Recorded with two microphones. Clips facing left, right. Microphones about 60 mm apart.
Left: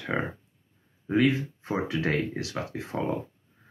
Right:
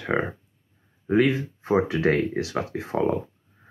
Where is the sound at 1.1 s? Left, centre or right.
Centre.